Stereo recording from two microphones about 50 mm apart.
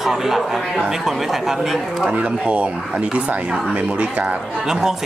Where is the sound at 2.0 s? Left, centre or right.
Right.